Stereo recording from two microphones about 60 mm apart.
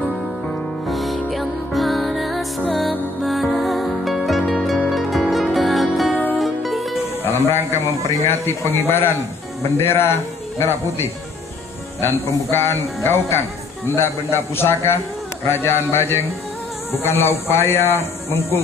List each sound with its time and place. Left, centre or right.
0.8 s music: centre
4.3 s harp: centre
4.8 s music: centre
7.2 s speech: left